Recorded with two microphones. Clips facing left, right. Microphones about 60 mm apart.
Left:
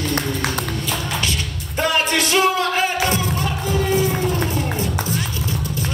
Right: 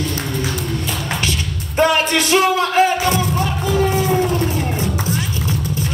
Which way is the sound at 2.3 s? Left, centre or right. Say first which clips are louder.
Right 4 dB; right.